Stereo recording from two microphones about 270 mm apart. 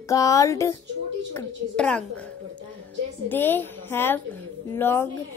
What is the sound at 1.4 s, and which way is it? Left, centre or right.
Speech, centre.